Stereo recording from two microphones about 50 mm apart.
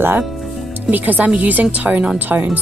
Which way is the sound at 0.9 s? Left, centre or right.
Right.